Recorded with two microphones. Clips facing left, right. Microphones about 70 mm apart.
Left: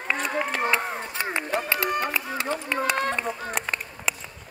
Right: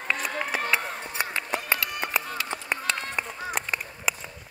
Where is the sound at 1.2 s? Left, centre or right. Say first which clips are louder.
Left 4 dB; left.